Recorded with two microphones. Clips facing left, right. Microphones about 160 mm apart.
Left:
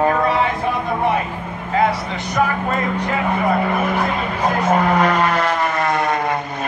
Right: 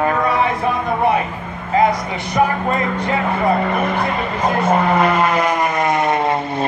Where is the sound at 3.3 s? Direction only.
5° left (ahead or behind).